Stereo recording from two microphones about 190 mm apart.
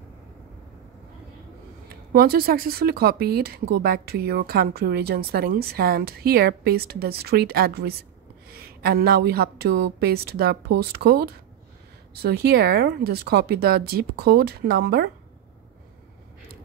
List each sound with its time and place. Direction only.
1.9 s speech: 50° right (ahead or behind)